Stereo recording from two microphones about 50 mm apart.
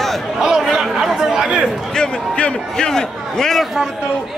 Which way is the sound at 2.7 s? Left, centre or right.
Centre.